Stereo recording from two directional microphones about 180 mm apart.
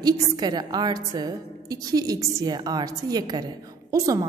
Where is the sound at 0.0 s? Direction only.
25° right (ahead or behind).